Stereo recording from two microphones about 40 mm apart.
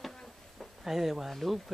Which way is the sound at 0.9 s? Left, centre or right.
Centre.